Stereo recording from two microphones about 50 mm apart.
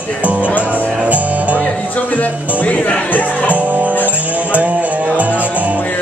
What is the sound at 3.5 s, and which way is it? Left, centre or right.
Music, right.